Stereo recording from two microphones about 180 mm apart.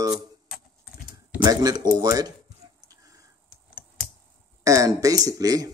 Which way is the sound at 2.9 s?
20° right (ahead or behind).